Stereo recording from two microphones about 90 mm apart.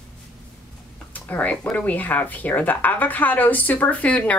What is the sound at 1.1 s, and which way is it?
A woman's voice, 15° left (ahead or behind).